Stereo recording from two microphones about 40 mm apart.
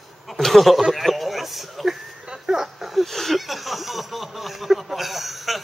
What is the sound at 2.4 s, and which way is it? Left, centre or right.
Speech, centre.